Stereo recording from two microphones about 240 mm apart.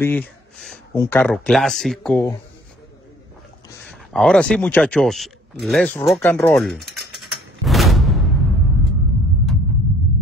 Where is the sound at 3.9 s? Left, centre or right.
Centre.